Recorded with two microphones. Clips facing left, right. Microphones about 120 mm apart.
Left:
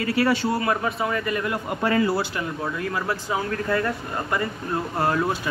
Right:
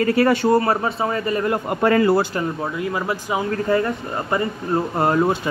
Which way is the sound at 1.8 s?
55° right (ahead or behind).